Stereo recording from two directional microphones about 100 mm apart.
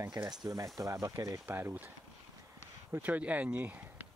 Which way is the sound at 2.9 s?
15° right (ahead or behind).